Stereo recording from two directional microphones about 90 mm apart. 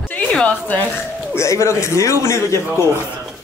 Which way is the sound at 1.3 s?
35° left (ahead or behind).